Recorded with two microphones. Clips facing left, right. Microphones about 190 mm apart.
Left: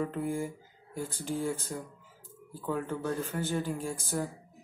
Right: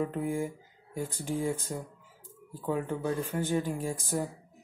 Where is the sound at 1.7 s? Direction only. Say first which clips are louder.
Right 1 dB; 15° right (ahead or behind).